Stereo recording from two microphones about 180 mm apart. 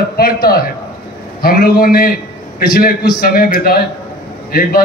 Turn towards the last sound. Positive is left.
turn(degrees=55)  # may be behind; listen again after turning